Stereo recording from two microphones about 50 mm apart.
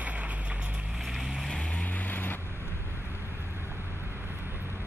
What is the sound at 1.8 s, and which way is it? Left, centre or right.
Vehicle, left.